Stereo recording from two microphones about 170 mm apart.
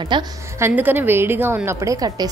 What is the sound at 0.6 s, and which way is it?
Speech, 10° right (ahead or behind).